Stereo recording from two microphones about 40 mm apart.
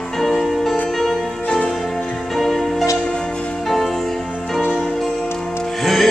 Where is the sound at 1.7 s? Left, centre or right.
Centre.